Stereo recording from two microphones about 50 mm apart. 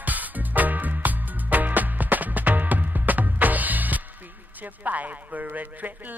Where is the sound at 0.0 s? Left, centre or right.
Right.